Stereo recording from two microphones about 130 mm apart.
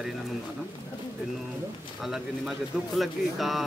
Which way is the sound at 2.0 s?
Centre (ahead or behind).